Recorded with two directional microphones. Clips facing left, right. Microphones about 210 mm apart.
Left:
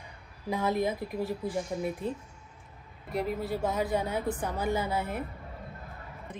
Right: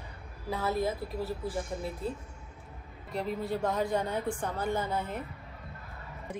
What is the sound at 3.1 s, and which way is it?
Speech, 5° left (ahead or behind).